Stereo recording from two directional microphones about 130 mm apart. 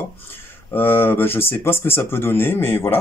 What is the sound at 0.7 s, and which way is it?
Speech, 15° left (ahead or behind).